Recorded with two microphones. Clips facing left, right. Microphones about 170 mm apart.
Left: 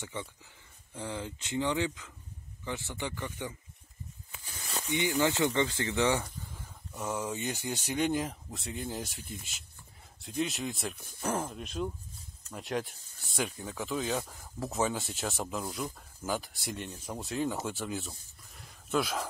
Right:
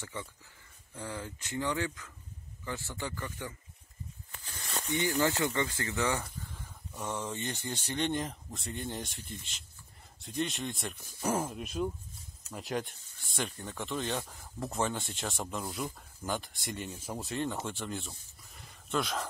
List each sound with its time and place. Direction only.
0.0 s speech: 20° left (ahead or behind)
4.3 s snake: 5° left (ahead or behind)
5.6 s speech: 25° left (ahead or behind)
6.2 s speech: centre (ahead or behind)